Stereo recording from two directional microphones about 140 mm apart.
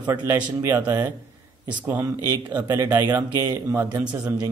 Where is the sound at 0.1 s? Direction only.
20° right (ahead or behind).